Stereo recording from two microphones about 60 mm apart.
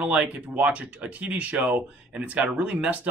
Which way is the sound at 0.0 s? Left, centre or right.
Centre.